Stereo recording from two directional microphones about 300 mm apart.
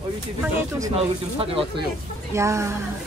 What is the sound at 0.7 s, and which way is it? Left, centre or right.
Speech, centre.